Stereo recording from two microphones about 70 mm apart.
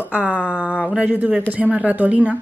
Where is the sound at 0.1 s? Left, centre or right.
Centre.